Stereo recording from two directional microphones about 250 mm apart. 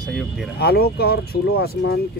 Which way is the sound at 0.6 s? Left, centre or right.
Left.